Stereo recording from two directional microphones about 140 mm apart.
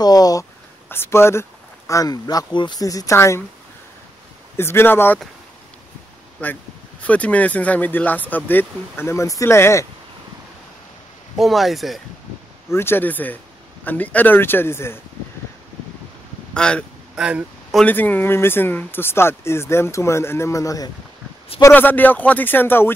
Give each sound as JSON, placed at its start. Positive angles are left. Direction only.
{"t": 0.0, "sound": "speech", "side_deg": 25}
{"t": 4.6, "sound": "speech", "side_deg": 15}
{"t": 6.4, "sound": "speech", "side_deg": 10}
{"t": 11.3, "sound": "speech", "side_deg": 0}
{"t": 12.6, "sound": "speech", "side_deg": 15}
{"t": 16.5, "sound": "speech", "side_deg": 5}
{"t": 17.1, "sound": "speech", "side_deg": -10}
{"t": 17.8, "sound": "speech", "side_deg": 15}